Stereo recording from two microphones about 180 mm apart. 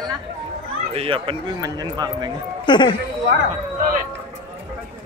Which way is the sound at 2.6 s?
25° left (ahead or behind).